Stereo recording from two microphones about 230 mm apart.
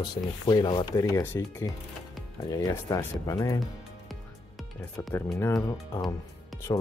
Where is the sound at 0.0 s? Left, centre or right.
Centre.